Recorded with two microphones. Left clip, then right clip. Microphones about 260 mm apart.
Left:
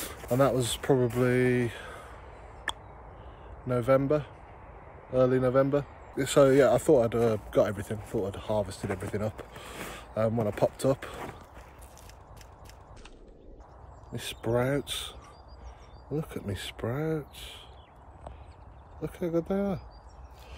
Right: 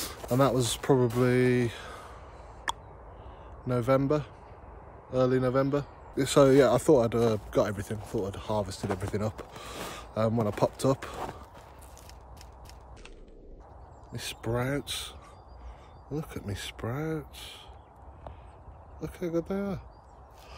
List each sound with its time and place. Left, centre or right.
0.0 s speech: centre
3.6 s speech: centre
14.1 s speech: centre
18.9 s speech: centre